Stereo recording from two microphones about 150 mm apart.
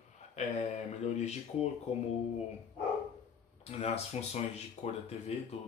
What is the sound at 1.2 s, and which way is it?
Speech, 50° left (ahead or behind).